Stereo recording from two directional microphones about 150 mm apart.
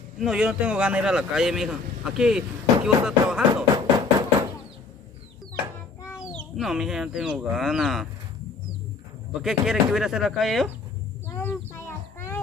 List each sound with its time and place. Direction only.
0.2 s speech: 5° right (ahead or behind)
3.7 s music: 25° right (ahead or behind)
6.5 s speech: centre (ahead or behind)
9.3 s speech: 5° right (ahead or behind)
11.2 s a sound: 15° left (ahead or behind)